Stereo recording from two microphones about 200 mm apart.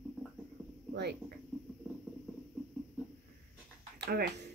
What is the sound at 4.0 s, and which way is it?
Speech, 55° right (ahead or behind).